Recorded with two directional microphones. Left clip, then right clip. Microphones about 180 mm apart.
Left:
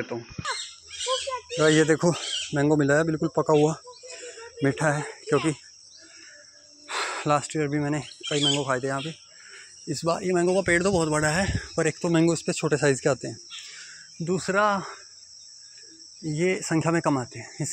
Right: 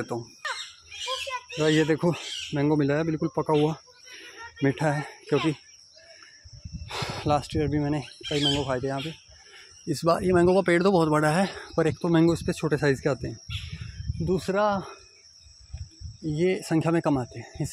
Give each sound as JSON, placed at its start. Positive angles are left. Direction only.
{"t": 0.1, "sound": "speech", "side_deg": -30}
{"t": 1.6, "sound": "speech", "side_deg": -5}
{"t": 4.1, "sound": "a sound", "side_deg": -15}
{"t": 6.9, "sound": "speech", "side_deg": -20}
{"t": 9.8, "sound": "speech", "side_deg": -40}
{"t": 13.7, "sound": "cricket", "side_deg": -25}
{"t": 16.3, "sound": "speech", "side_deg": -25}